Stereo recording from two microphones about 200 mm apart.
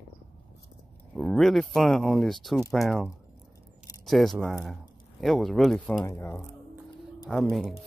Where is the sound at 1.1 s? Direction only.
Centre (ahead or behind).